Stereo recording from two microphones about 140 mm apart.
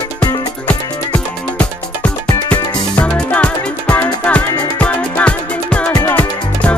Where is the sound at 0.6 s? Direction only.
10° left (ahead or behind).